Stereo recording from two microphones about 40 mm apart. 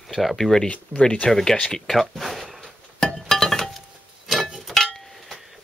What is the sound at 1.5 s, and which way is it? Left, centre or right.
Speech, left.